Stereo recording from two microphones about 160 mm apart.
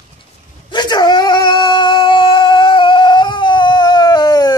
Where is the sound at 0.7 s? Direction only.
30° left (ahead or behind).